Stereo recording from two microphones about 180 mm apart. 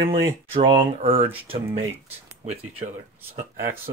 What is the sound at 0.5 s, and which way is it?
Speech, 30° right (ahead or behind).